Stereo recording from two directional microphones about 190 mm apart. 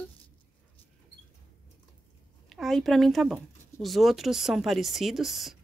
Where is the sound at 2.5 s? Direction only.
Centre (ahead or behind).